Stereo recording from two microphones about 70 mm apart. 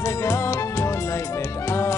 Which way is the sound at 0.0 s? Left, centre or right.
Left.